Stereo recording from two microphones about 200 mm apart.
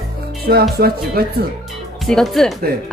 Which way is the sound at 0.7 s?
50° right (ahead or behind).